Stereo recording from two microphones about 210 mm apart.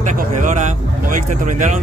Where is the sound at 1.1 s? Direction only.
40° right (ahead or behind).